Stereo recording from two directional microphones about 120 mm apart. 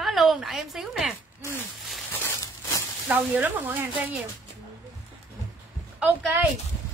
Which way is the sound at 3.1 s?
15° right (ahead or behind).